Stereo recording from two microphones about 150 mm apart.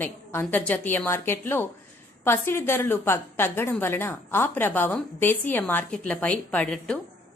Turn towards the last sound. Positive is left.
turn(degrees=10)  # may be behind; listen again after turning